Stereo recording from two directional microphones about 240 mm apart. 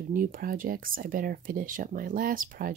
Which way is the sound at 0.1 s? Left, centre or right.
Right.